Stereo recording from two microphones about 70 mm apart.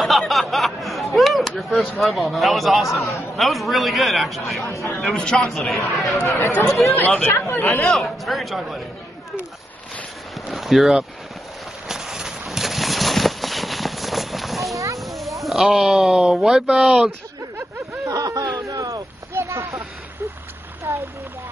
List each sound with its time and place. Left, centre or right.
0.0 s a man's voice: centre
5.2 s a man's voice: centre
7.2 s speech: left
7.8 s a man's voice: centre
10.5 s speech: centre
11.9 s clip-clop: centre
15.0 s speech: centre
18.0 s a sound: right
20.9 s speech: right